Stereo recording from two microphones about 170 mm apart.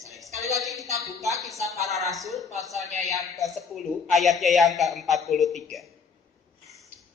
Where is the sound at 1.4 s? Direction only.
Centre (ahead or behind).